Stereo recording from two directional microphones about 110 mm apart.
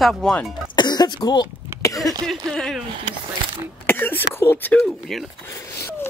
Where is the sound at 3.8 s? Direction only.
20° left (ahead or behind).